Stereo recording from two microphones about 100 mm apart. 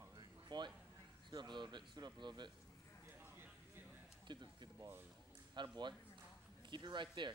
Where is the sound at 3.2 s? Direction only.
20° right (ahead or behind).